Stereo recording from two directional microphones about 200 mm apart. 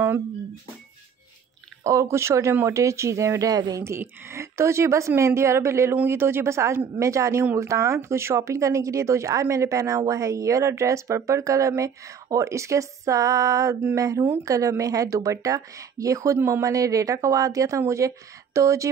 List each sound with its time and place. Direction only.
1.8 s speech: 15° right (ahead or behind)